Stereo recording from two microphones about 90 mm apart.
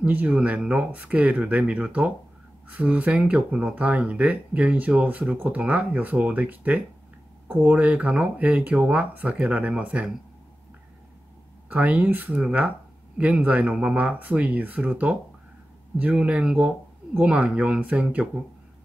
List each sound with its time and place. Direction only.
0.0 s speech: 15° right (ahead or behind)
11.7 s speech: 15° right (ahead or behind)